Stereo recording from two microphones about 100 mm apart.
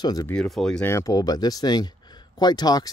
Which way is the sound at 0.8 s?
25° left (ahead or behind).